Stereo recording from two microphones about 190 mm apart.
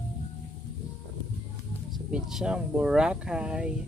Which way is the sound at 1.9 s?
5° right (ahead or behind).